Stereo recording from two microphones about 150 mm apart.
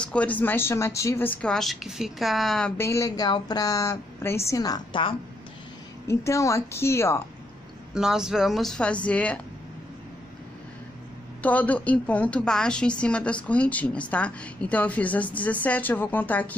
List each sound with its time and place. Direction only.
0.0 s a woman's voice: 10° left (ahead or behind)
2.8 s a woman's voice: 20° left (ahead or behind)
6.0 s a woman's voice: 20° left (ahead or behind)
7.9 s speech: 5° right (ahead or behind)
11.4 s a woman's voice: 10° left (ahead or behind)